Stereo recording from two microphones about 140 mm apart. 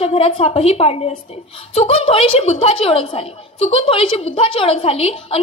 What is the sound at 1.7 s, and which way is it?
A woman's voice, 45° left (ahead or behind).